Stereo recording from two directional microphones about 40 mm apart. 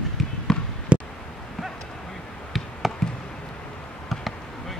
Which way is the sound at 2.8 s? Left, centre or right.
Centre.